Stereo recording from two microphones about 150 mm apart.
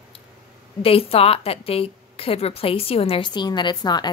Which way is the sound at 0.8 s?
40° left (ahead or behind).